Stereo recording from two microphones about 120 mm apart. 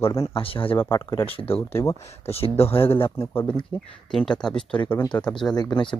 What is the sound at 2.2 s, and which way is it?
Speech, 55° left (ahead or behind).